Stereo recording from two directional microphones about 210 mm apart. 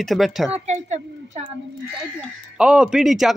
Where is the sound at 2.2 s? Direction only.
5° right (ahead or behind).